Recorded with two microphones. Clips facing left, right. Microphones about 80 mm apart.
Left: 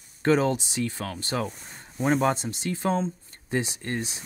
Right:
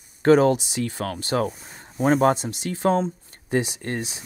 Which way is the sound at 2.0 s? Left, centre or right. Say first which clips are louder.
Right 5 dB; right.